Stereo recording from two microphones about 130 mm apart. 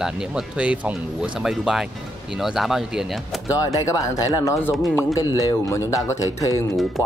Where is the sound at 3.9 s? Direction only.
25° left (ahead or behind).